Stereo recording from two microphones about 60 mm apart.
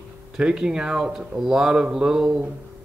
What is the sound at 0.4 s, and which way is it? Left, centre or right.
Speech, centre.